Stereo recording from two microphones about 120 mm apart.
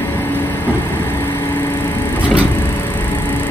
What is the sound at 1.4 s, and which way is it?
Vehicle, 20° left (ahead or behind).